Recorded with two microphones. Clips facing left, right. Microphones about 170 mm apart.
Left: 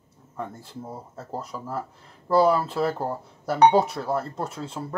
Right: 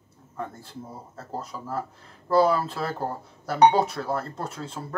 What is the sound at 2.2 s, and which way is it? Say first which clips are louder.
Speech: left 1 dB; 15° left (ahead or behind).